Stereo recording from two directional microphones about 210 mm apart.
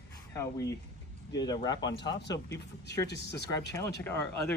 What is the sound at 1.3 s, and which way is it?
Speech, 20° left (ahead or behind).